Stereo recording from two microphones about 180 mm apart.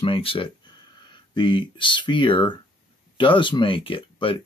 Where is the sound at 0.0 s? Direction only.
30° left (ahead or behind).